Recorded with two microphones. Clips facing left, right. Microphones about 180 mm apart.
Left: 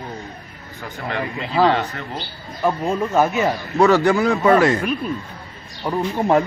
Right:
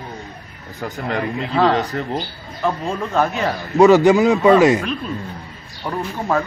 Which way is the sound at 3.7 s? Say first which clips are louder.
Right 5 dB; 15° right (ahead or behind).